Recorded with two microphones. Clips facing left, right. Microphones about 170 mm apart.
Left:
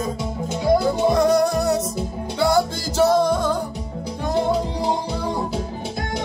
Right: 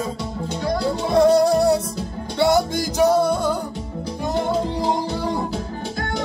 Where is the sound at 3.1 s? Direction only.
10° right (ahead or behind).